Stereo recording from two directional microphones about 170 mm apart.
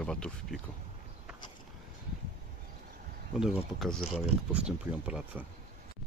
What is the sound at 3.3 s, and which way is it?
Speech, 5° right (ahead or behind).